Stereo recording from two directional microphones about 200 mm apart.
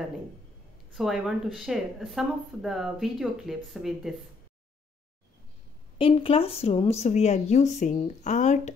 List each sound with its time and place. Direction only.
0.9 s speech: centre (ahead or behind)
5.9 s speech: 25° left (ahead or behind)